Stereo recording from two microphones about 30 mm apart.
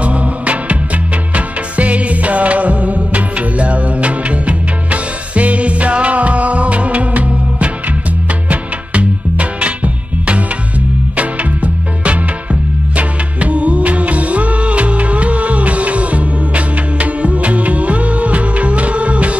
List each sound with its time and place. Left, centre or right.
0.0 s music: right
11.1 s music: right